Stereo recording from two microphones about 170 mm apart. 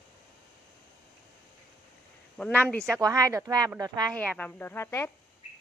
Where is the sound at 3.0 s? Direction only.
20° right (ahead or behind).